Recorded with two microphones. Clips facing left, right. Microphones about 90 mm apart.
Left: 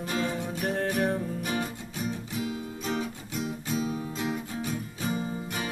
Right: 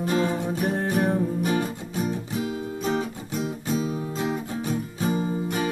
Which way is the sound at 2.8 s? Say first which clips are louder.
Right 5 dB; 30° right (ahead or behind).